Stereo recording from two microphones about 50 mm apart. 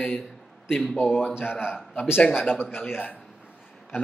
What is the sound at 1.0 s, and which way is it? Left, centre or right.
Speech, left.